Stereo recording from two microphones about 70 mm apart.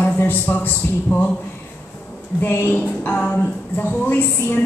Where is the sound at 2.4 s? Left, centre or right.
Left.